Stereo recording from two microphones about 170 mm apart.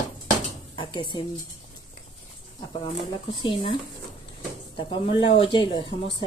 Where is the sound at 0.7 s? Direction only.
30° left (ahead or behind).